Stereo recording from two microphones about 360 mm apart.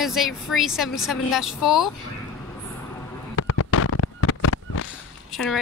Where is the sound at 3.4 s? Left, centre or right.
Left.